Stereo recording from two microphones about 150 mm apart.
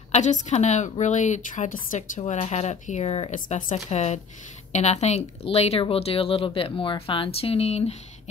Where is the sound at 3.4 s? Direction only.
60° left (ahead or behind).